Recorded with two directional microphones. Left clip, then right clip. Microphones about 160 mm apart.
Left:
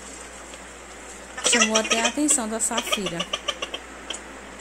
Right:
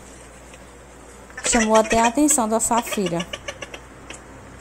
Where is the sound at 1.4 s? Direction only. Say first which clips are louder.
Right 3 dB; centre (ahead or behind).